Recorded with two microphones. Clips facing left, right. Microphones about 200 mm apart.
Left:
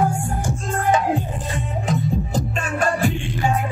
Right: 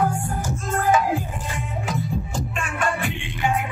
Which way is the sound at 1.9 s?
40° left (ahead or behind).